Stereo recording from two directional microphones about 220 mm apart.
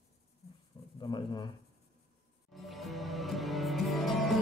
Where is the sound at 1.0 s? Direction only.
20° left (ahead or behind).